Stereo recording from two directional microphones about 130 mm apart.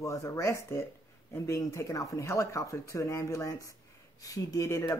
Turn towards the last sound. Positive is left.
turn(degrees=25)  # may be behind; listen again after turning